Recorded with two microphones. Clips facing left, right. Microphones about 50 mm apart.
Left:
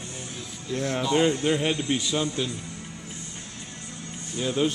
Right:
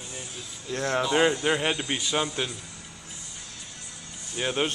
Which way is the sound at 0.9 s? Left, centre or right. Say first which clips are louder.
Even; centre.